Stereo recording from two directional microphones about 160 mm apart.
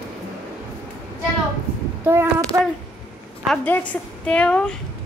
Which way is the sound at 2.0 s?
15° right (ahead or behind).